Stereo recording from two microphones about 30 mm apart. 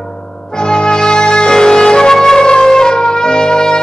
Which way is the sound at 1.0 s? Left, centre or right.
Left.